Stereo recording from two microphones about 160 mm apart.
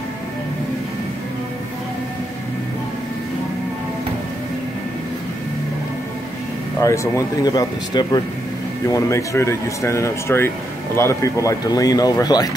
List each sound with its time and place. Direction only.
6.8 s speech: 20° left (ahead or behind)